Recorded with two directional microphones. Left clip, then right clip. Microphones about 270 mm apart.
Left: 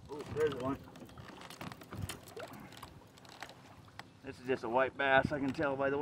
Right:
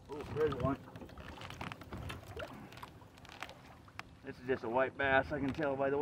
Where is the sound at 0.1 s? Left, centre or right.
Centre.